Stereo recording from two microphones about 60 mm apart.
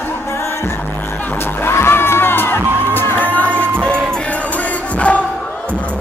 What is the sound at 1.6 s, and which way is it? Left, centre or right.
Music, left.